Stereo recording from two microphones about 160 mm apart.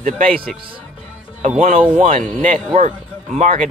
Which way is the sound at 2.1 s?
55° right (ahead or behind).